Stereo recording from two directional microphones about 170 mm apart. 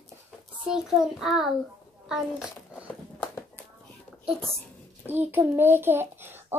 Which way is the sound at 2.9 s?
10° left (ahead or behind).